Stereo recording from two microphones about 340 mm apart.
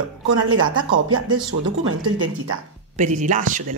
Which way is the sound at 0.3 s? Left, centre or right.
Right.